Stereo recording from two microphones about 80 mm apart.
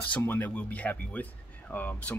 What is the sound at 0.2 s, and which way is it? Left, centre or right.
Speech, left.